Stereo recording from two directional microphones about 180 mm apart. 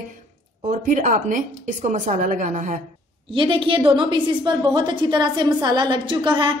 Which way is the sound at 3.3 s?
30° right (ahead or behind).